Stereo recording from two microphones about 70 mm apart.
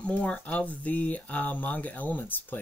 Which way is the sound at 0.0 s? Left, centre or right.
Centre.